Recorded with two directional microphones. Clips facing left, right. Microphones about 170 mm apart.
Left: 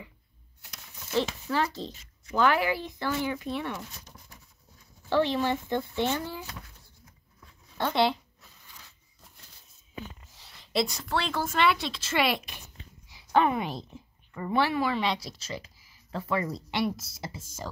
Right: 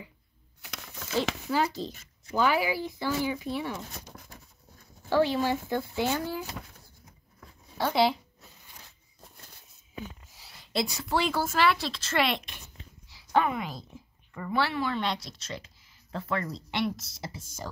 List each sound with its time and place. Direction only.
0.6 s a sound: 90° right
1.5 s speech: 10° right (ahead or behind)
4.1 s writing: 65° right (ahead or behind)
5.1 s a woman's voice: 5° right (ahead or behind)
7.7 s speech: 10° right (ahead or behind)
10.4 s a woman's voice: centre (ahead or behind)
13.1 s a sound: 25° left (ahead or behind)
14.4 s speech: 20° left (ahead or behind)